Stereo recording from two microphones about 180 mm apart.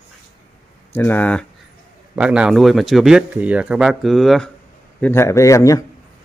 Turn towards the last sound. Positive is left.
turn(degrees=20)  # may be behind; listen again after turning